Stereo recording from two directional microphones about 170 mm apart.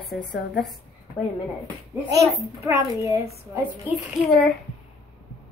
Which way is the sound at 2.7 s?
15° right (ahead or behind).